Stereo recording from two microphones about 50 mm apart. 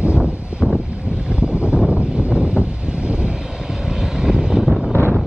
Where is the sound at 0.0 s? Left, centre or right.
Right.